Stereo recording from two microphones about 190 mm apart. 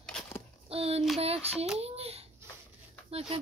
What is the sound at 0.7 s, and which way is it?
A child's voice, 30° right (ahead or behind).